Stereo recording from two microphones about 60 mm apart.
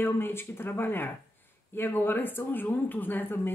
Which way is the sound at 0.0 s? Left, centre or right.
Left.